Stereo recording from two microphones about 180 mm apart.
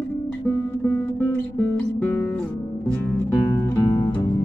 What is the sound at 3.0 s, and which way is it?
Music, 15° left (ahead or behind).